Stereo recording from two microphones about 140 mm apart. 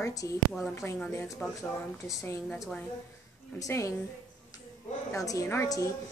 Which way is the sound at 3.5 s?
20° left (ahead or behind).